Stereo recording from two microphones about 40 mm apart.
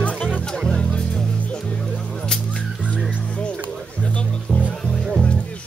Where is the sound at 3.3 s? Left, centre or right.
Left.